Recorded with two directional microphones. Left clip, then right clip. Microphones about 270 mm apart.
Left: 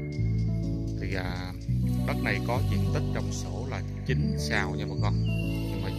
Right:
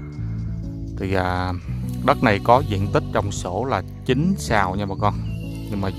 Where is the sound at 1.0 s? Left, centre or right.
Centre.